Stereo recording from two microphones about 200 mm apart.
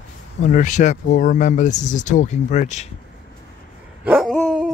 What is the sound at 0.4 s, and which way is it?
Speech, 40° left (ahead or behind).